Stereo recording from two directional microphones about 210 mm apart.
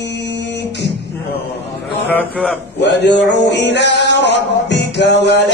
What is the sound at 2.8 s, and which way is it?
Male singing, 55° left (ahead or behind).